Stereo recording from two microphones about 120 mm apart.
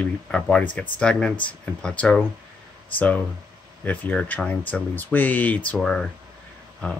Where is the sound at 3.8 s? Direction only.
15° left (ahead or behind).